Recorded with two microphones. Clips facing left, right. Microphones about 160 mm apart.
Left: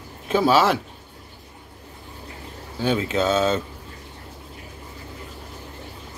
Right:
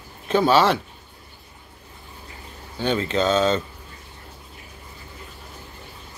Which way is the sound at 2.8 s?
5° left (ahead or behind).